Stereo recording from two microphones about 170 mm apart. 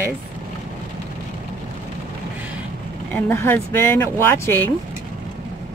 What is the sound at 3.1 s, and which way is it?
Speech, 10° left (ahead or behind).